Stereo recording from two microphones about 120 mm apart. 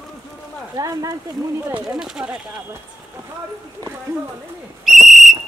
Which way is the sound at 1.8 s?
5° right (ahead or behind).